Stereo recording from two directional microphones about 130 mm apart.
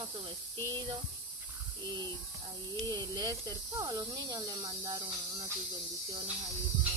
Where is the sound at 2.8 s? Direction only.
35° right (ahead or behind).